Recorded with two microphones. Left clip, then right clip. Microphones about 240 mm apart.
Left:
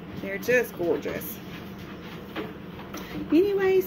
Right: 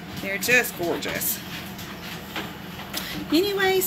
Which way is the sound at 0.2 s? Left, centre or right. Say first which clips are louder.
Right 3 dB; right.